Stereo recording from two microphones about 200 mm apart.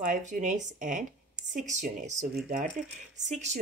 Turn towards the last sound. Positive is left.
turn(degrees=-35)  # may be behind; listen again after turning